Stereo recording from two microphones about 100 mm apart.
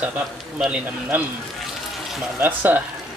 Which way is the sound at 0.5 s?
10° right (ahead or behind).